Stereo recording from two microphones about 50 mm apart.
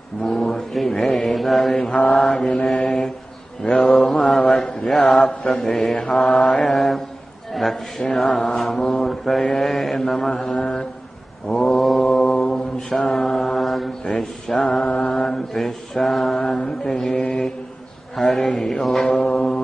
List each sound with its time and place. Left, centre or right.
0.2 s mantra: centre
11.4 s mantra: centre
14.9 s mantra: left
15.3 s mantra: centre
18.1 s a man's voice: centre
18.4 s mantra: centre
19.1 s a sound: centre